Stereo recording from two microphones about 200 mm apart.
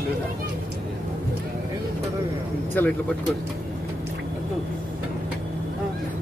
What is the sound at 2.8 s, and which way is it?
Speech, 10° left (ahead or behind).